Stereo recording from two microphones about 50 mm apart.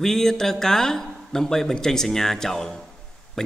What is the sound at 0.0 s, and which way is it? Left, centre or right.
Speech, centre.